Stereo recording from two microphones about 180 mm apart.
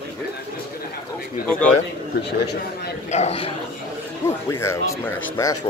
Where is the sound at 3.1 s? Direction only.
35° left (ahead or behind).